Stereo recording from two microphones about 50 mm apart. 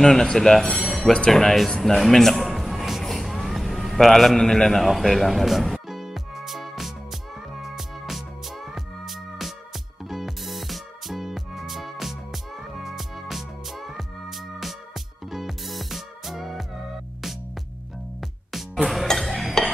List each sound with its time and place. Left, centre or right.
0.0 s a sound: centre
0.9 s speech: centre
1.3 s speech: centre
1.8 s music: centre
3.1 s a sound: centre
4.8 s music: centre
19.0 s cutlery: centre